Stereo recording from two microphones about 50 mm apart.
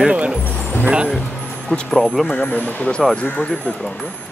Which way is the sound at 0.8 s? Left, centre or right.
Right.